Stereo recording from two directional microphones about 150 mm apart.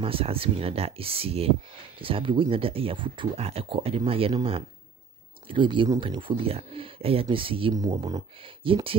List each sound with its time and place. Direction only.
0.0 s speech: 40° right (ahead or behind)
7.7 s speech: 25° right (ahead or behind)